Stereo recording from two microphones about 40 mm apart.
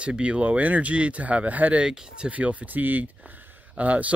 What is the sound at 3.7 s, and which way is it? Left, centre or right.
Speech, right.